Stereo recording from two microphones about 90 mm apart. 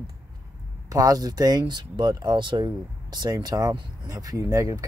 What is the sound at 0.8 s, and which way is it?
Speech, 40° right (ahead or behind).